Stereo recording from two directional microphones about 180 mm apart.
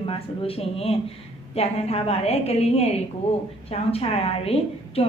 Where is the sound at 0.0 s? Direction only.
30° left (ahead or behind).